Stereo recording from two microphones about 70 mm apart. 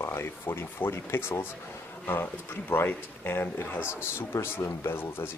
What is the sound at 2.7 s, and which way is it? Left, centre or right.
Speech, left.